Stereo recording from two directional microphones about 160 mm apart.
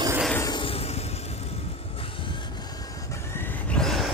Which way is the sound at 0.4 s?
30° left (ahead or behind).